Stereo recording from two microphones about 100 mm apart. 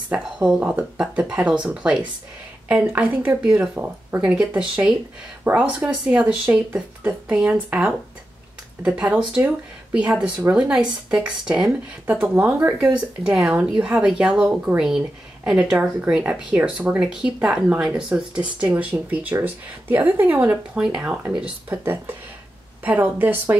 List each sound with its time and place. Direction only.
0.1 s speech: 10° right (ahead or behind)
13.2 s speech: 5° right (ahead or behind)
21.6 s speech: 20° right (ahead or behind)